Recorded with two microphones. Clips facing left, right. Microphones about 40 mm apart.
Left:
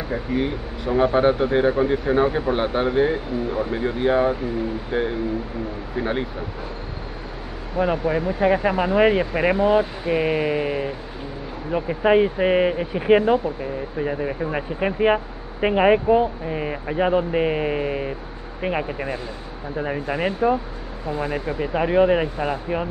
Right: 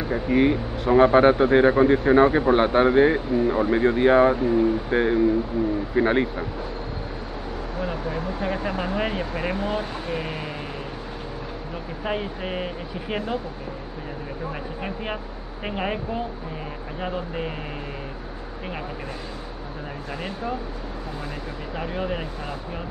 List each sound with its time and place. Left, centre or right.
0.1 s speech: centre
7.8 s speech: left